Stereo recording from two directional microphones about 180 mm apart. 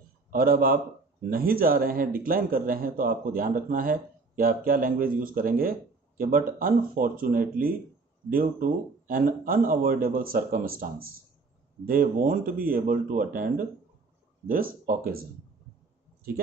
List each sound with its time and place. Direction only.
0.3 s speech: 55° right (ahead or behind)